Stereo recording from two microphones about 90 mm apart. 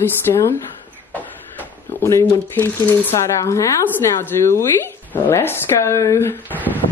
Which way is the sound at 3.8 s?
20° left (ahead or behind).